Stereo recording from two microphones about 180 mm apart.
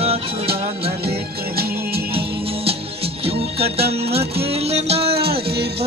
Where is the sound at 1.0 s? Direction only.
60° right (ahead or behind).